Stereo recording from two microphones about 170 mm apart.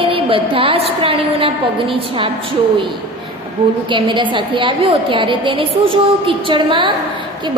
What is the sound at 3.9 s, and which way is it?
A woman's voice, 30° right (ahead or behind).